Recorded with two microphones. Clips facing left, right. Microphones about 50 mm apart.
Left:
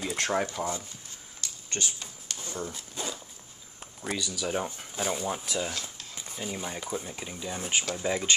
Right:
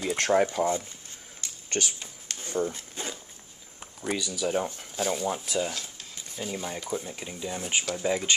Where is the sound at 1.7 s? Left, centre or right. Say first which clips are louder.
Right 4 dB; right.